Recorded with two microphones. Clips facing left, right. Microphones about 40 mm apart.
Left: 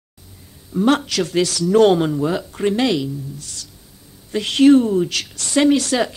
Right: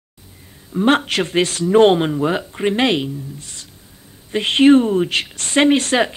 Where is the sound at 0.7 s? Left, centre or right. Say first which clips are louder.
Right 1 dB; right.